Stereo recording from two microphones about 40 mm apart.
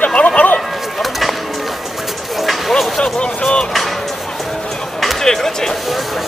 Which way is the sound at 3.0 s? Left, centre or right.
Left.